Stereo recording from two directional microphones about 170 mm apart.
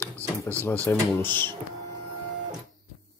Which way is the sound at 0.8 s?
10° left (ahead or behind).